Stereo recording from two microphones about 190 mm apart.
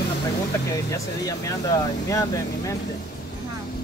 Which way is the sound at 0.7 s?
15° left (ahead or behind).